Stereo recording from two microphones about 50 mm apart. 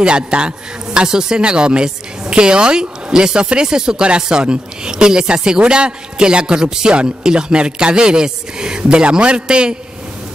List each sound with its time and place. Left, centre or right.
0.0 s a man's voice: centre